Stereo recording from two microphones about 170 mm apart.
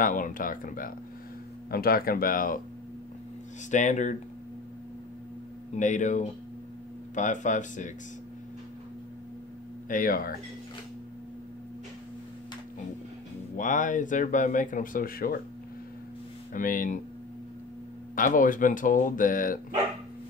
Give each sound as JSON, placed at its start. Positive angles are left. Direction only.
{"t": 0.0, "sound": "speech", "side_deg": 55}
{"t": 3.7, "sound": "speech", "side_deg": 45}
{"t": 5.8, "sound": "speech", "side_deg": 45}
{"t": 9.8, "sound": "speech", "side_deg": 55}
{"t": 13.6, "sound": "speech", "side_deg": 50}
{"t": 16.5, "sound": "speech", "side_deg": 55}
{"t": 18.1, "sound": "speech", "side_deg": 55}